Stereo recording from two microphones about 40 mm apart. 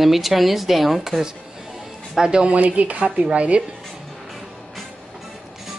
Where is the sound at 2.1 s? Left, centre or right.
Centre.